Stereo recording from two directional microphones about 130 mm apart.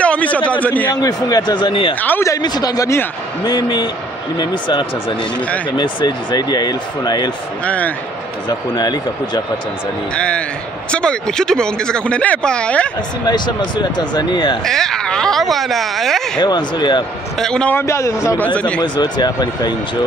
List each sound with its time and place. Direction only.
0.0 s a sound: 10° left (ahead or behind)
1.0 s speech: 30° left (ahead or behind)
2.0 s speech: 15° left (ahead or behind)
2.3 s speech: 30° left (ahead or behind)
7.6 s speech: 10° left (ahead or behind)
8.5 s speech: 30° left (ahead or behind)
10.1 s speech: 10° left (ahead or behind)
13.3 s speech: 35° left (ahead or behind)
14.6 s speech: 5° left (ahead or behind)
16.3 s speech: 35° left (ahead or behind)
17.4 s speech: 5° left (ahead or behind)
17.7 s speech: 20° left (ahead or behind)
18.4 s speech: 10° left (ahead or behind)
18.8 s speech: 35° left (ahead or behind)